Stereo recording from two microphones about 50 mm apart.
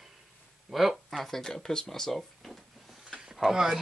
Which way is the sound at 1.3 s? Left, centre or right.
Centre.